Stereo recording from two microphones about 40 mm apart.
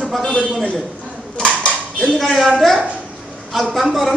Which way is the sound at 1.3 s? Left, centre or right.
Left.